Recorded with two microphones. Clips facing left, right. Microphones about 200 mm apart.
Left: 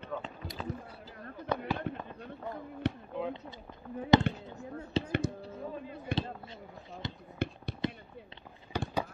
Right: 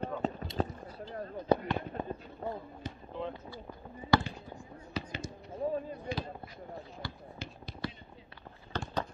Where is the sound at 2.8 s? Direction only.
70° left (ahead or behind).